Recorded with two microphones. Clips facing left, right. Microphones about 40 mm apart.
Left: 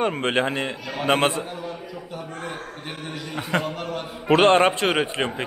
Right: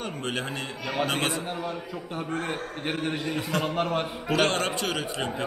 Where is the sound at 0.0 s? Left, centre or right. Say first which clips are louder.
Left 9 dB; left.